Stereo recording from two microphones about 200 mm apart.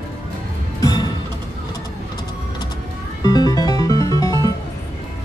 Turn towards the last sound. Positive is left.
turn(degrees=20)  # may be behind; listen again after turning